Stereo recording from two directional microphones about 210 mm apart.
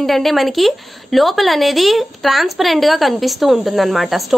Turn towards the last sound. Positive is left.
turn(degrees=0)  # may be behind; listen again after turning